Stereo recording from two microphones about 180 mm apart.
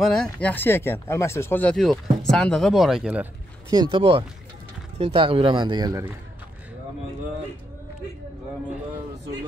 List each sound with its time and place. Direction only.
0.0 s speech: 5° left (ahead or behind)
3.7 s speech: 25° right (ahead or behind)